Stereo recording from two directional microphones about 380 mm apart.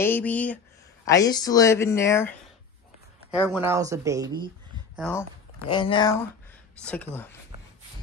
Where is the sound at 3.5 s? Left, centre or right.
Centre.